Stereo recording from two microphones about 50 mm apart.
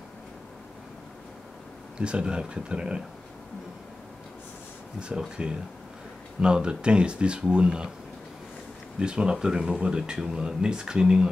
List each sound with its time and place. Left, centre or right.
2.0 s speech: right
5.4 s speech: right
9.0 s speech: centre